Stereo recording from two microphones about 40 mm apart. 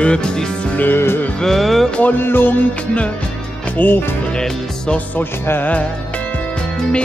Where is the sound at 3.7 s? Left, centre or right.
Left.